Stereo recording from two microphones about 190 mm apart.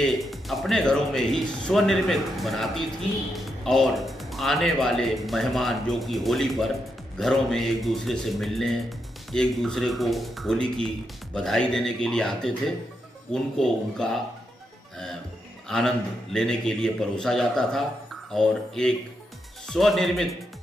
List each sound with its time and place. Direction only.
0.0 s a man's voice: centre (ahead or behind)
15.7 s a man's voice: centre (ahead or behind)